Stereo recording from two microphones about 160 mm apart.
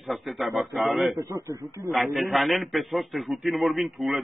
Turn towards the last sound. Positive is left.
turn(degrees=0)  # may be behind; listen again after turning